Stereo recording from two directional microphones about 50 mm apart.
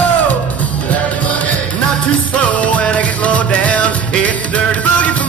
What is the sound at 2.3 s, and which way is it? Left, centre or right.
Music, left.